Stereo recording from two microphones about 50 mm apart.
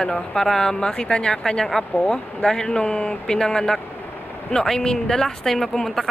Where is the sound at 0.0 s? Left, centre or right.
Centre.